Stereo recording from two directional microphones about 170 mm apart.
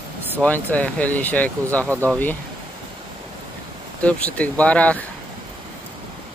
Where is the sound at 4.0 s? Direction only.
10° left (ahead or behind).